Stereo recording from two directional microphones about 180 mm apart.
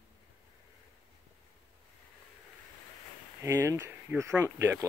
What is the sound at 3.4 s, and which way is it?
Speech, 15° right (ahead or behind).